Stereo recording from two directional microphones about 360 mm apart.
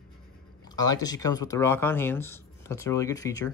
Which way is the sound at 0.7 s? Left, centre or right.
Centre.